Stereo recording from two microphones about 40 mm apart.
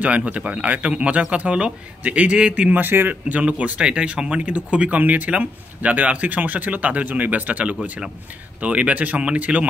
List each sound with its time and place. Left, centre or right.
0.0 s speech: right
2.0 s speech: right
2.3 s speech: right
2.7 s speech: right
3.3 s speech: right